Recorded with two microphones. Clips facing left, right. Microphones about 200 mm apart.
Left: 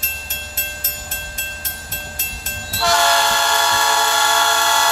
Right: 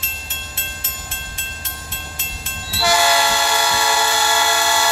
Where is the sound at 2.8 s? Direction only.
5° right (ahead or behind).